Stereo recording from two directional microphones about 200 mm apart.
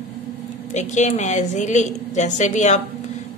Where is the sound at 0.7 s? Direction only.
35° left (ahead or behind).